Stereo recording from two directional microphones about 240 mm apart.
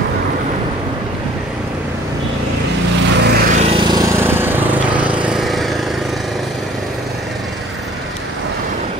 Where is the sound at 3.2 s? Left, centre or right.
Right.